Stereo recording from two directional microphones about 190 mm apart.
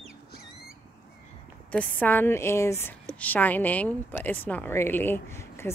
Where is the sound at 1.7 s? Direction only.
10° left (ahead or behind).